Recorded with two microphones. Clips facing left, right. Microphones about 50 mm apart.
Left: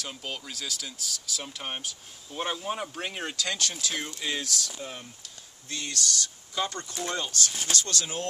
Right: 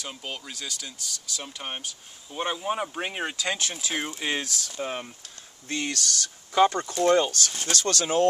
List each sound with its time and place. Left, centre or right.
0.0 s speech: centre; by 8.3 s right